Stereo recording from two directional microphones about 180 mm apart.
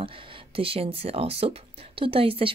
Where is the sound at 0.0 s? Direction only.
30° right (ahead or behind).